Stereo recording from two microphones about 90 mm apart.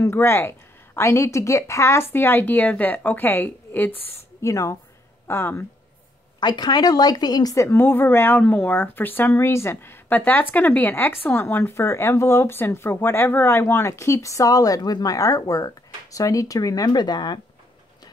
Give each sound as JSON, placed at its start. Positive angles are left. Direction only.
{"t": 0.0, "sound": "speech", "side_deg": 30}
{"t": 4.4, "sound": "speech", "side_deg": 35}
{"t": 6.4, "sound": "a woman's voice", "side_deg": 50}
{"t": 7.5, "sound": "speech", "side_deg": 25}